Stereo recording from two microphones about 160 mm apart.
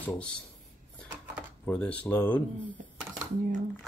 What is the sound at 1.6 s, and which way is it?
Speech, 10° left (ahead or behind).